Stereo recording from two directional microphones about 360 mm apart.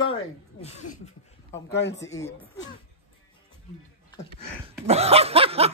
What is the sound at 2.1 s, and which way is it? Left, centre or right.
Speech, centre.